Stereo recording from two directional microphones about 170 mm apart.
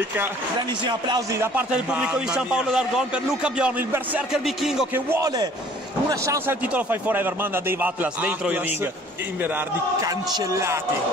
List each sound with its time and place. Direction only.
0.6 s a man's voice: 25° right (ahead or behind); by 4.8 s centre (ahead or behind)
4.9 s a man's voice: 15° right (ahead or behind)